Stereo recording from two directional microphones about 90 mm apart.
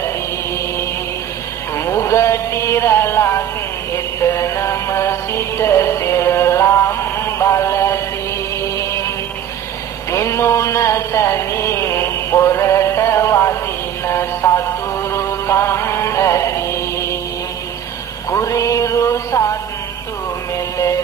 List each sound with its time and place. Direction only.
1.9 s music: 30° left (ahead or behind)
10.1 s music: 30° left (ahead or behind)
18.3 s music: 35° left (ahead or behind)